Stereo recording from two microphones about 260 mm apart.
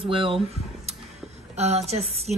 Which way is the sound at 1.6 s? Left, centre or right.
Right.